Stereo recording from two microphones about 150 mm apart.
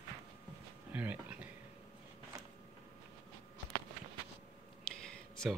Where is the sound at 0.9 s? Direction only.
10° right (ahead or behind).